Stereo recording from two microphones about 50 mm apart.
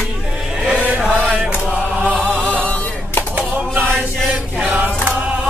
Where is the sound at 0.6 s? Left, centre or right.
Right.